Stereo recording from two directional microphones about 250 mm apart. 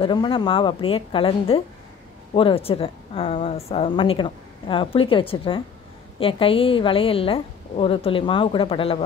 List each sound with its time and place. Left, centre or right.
0.0 s a woman's voice: centre